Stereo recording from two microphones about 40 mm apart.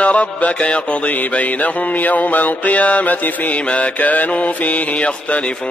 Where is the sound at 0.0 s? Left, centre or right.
Left.